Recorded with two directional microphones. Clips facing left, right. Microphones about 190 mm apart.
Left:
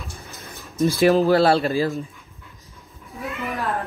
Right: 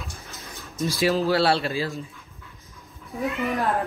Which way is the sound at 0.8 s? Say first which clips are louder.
Left 6 dB; 55° left (ahead or behind).